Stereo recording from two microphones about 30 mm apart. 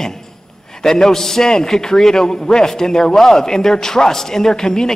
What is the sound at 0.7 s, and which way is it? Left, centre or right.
A man's voice, centre.